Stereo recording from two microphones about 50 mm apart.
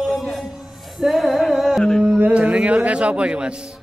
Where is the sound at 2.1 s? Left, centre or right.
Right.